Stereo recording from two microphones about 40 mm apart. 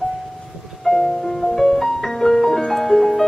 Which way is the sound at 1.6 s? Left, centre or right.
Centre.